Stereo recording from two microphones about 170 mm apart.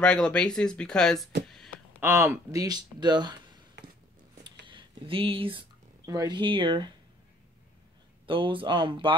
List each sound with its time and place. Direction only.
0.0 s speech: 5° left (ahead or behind)
1.5 s a sound: centre (ahead or behind)
2.0 s speech: 15° right (ahead or behind)
4.6 s speech: 30° right (ahead or behind)
8.3 s speech: 30° right (ahead or behind)